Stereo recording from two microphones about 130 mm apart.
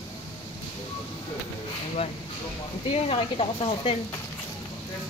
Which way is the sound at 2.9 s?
50° left (ahead or behind).